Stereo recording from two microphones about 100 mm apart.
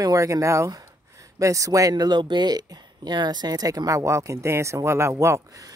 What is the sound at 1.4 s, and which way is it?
Speech, 35° right (ahead or behind).